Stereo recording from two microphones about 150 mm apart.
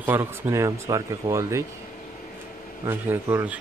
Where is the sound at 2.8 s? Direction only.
15° right (ahead or behind).